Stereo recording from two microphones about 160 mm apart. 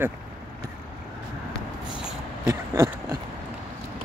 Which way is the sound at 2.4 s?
15° right (ahead or behind).